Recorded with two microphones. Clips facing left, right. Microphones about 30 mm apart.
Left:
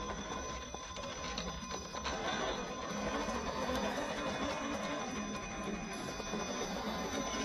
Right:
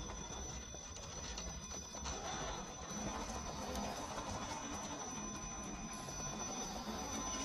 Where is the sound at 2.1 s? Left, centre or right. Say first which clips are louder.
Left 8 dB; left.